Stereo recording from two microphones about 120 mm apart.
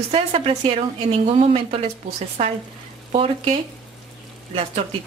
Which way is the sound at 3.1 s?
50° right (ahead or behind).